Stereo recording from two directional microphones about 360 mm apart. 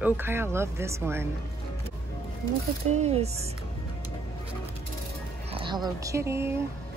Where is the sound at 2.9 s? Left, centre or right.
Centre.